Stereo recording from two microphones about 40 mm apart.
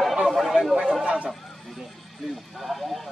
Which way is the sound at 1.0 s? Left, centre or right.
Right.